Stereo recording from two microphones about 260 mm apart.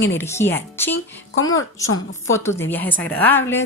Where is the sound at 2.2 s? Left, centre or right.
Centre.